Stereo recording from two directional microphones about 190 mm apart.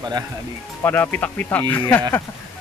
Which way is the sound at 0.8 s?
10° left (ahead or behind).